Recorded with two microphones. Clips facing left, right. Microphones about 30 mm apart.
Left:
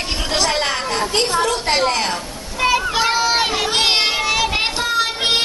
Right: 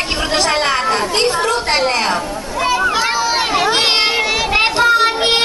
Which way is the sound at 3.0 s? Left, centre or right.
Centre.